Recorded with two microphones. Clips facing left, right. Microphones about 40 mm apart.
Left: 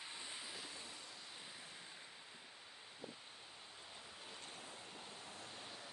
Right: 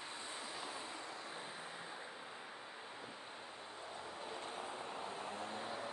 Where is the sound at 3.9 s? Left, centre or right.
Right.